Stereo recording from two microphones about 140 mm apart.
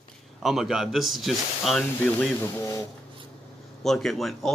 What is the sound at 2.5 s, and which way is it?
Speech, 20° left (ahead or behind).